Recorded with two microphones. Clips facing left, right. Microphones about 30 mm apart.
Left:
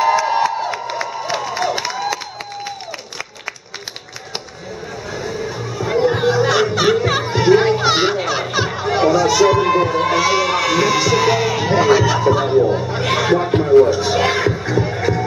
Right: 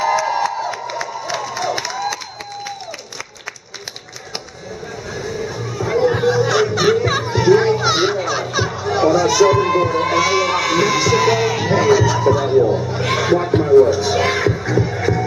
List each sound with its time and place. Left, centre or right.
0.0 s crowd: centre
5.1 s music: centre
8.2 s chatter: left
9.1 s run: centre
12.5 s a sound: centre
13.8 s music: centre